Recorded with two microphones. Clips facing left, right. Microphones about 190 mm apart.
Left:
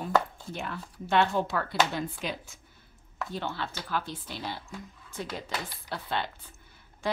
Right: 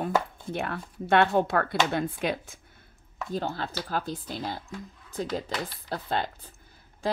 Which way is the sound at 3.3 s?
40° right (ahead or behind).